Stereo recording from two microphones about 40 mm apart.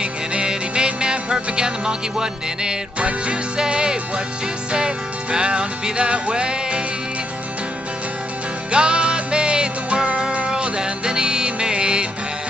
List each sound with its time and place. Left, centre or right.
0.0 s music: right
3.0 s music: right
8.7 s music: right